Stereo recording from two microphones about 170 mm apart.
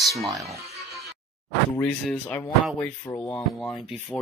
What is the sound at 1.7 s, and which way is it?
Speech, 5° left (ahead or behind).